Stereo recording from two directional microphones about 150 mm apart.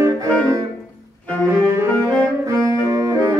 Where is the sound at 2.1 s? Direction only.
25° right (ahead or behind).